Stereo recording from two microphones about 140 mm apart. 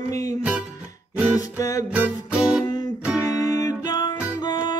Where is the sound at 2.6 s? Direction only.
30° left (ahead or behind).